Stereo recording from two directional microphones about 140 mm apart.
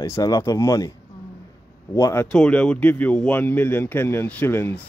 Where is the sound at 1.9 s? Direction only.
20° left (ahead or behind).